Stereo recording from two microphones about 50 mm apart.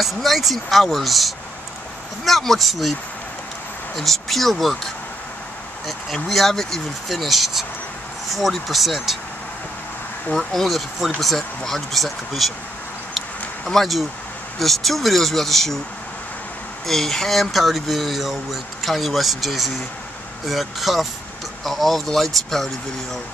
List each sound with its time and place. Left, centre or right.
0.0 s speech: centre
6.2 s speech: centre
10.3 s speech: centre
13.7 s speech: centre
16.8 s speech: centre